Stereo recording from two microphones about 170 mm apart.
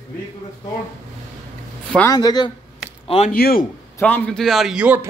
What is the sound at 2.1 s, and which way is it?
Speech, 25° left (ahead or behind).